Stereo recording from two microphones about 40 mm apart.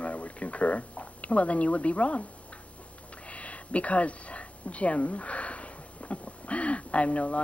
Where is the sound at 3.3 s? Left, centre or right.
Left.